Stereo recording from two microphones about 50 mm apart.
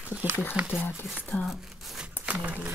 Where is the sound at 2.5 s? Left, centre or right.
Right.